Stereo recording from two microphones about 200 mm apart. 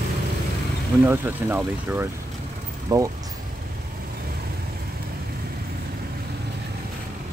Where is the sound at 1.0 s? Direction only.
10° right (ahead or behind).